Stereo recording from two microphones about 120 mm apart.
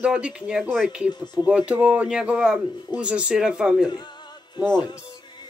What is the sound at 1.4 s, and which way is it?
Speech, 10° right (ahead or behind).